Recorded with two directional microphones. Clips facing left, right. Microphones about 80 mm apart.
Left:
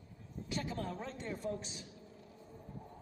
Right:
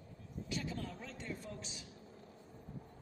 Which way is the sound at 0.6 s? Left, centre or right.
Left.